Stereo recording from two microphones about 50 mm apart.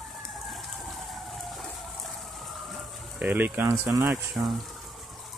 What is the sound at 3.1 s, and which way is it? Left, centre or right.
Speech, right.